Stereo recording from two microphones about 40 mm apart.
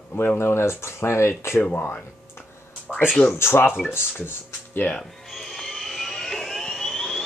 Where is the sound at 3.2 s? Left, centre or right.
Left.